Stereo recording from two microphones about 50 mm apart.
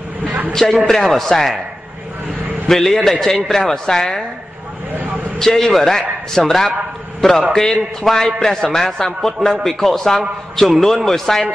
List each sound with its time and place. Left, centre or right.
0.5 s a sound: centre
0.8 s a man's voice: centre
2.7 s a man's voice: centre
5.4 s a man's voice: centre